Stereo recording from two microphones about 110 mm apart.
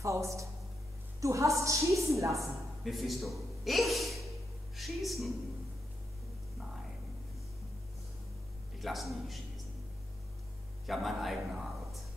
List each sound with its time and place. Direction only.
0.0 s a man's voice: 30° right (ahead or behind)
2.8 s speech: centre (ahead or behind)
8.7 s a man's voice: centre (ahead or behind)
10.9 s speech: centre (ahead or behind)